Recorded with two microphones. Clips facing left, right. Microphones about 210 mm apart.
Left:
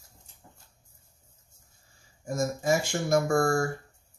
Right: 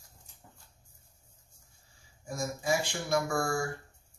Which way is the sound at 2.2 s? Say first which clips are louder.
Left 6 dB; 45° left (ahead or behind).